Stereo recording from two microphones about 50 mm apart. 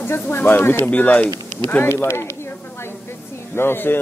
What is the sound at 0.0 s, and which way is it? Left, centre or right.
Speech, left.